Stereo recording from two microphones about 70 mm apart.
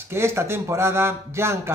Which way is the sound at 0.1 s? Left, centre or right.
Right.